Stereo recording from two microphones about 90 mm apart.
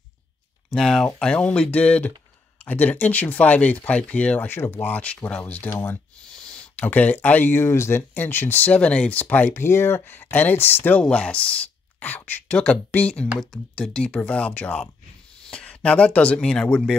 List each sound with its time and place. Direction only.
0.7 s speech: 5° left (ahead or behind); by 11.0 s 25° left (ahead or behind)
11.0 s speech: 10° left (ahead or behind)